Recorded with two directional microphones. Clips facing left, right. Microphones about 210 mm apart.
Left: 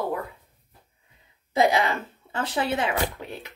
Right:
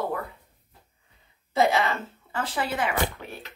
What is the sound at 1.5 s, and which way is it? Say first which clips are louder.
Speech: left 1 dB; 15° left (ahead or behind).